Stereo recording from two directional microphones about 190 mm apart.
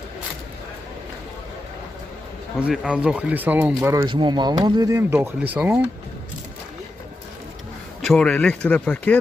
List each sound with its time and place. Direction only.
2.6 s speech: 5° right (ahead or behind)
3.9 s speech: 25° right (ahead or behind); by 5.9 s 5° right (ahead or behind)
8.0 s speech: 5° left (ahead or behind)